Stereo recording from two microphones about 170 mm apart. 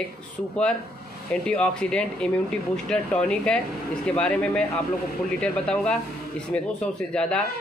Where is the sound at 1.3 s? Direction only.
5° left (ahead or behind).